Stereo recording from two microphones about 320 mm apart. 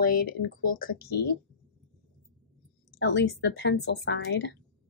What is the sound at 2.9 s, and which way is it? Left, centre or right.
Speech, left.